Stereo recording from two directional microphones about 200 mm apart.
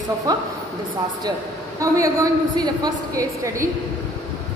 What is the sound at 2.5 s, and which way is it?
Speech, 20° right (ahead or behind).